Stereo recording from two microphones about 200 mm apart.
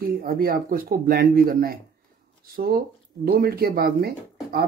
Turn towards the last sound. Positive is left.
turn(degrees=-50)  # may be behind; listen again after turning